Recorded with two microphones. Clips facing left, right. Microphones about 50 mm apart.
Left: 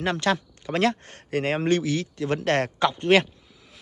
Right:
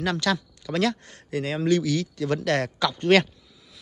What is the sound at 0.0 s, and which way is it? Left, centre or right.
A man's voice, left.